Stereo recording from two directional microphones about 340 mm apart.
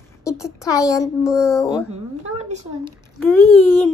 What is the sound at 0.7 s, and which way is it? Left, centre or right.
Speech, centre.